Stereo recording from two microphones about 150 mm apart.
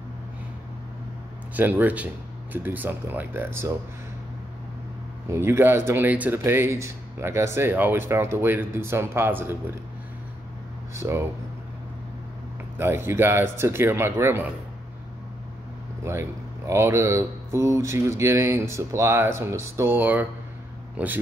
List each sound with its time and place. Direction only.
1.5 s speech: 10° right (ahead or behind)
5.3 s speech: 15° right (ahead or behind)
11.0 s speech: 20° right (ahead or behind)
12.7 s speech: 15° right (ahead or behind)
16.0 s speech: 20° right (ahead or behind)